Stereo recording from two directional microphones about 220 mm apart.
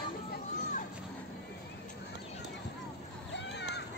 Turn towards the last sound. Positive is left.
turn(degrees=50)  # may be behind; listen again after turning